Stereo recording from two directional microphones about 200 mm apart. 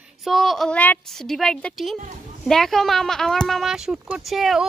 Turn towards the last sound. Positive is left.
turn(degrees=0)  # may be behind; listen again after turning